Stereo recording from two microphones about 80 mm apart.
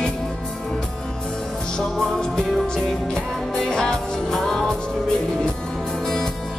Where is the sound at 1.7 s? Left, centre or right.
Centre.